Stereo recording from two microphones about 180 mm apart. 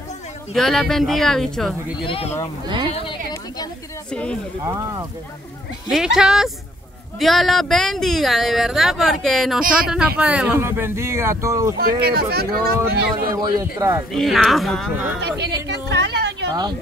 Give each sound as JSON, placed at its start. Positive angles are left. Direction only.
{"t": 0.6, "sound": "speech", "side_deg": 0}
{"t": 2.0, "sound": "speech", "side_deg": 30}
{"t": 4.1, "sound": "speech", "side_deg": 5}
{"t": 4.6, "sound": "speech", "side_deg": -15}
{"t": 5.9, "sound": "speech", "side_deg": -5}
{"t": 9.6, "sound": "speech", "side_deg": -50}
{"t": 9.8, "sound": "speech", "side_deg": -5}
{"t": 11.8, "sound": "speech", "side_deg": -60}
{"t": 13.6, "sound": "speech", "side_deg": -15}
{"t": 14.1, "sound": "speech", "side_deg": 0}
{"t": 15.7, "sound": "a sound", "side_deg": -75}